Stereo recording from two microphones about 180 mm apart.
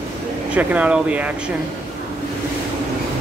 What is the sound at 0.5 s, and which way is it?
Speech, 5° right (ahead or behind).